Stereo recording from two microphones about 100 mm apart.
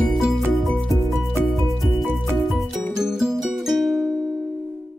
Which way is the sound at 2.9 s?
5° right (ahead or behind).